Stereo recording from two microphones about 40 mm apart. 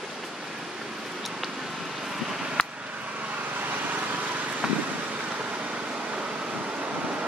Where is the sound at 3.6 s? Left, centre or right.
Right.